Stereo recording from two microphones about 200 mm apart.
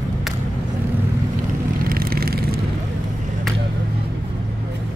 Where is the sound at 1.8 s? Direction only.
45° right (ahead or behind).